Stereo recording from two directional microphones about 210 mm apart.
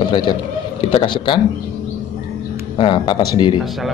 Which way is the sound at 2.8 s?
20° left (ahead or behind).